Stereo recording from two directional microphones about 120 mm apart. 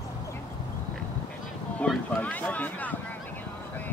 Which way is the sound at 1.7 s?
10° left (ahead or behind).